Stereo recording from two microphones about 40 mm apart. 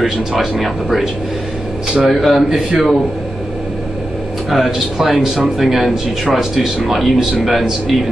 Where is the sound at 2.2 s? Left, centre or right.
Centre.